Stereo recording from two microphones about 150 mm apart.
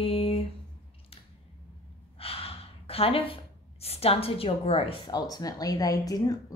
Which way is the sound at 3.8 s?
40° left (ahead or behind).